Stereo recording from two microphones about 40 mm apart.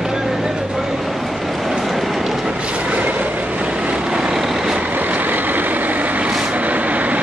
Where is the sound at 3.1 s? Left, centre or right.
Right.